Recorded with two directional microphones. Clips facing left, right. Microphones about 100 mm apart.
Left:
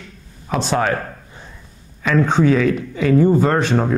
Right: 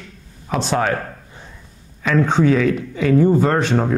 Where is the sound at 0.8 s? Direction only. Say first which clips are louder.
Left 1 dB; 20° left (ahead or behind).